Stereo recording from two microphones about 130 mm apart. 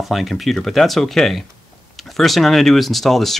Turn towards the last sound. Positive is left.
turn(degrees=0)  # may be behind; listen again after turning